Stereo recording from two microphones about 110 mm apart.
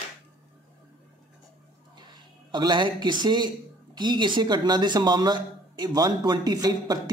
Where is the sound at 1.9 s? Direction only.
40° right (ahead or behind).